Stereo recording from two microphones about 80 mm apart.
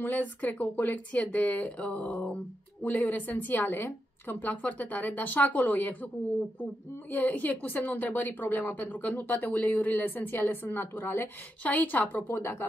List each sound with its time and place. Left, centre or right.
0.0 s a woman's voice: centre
7.1 s a woman's voice: centre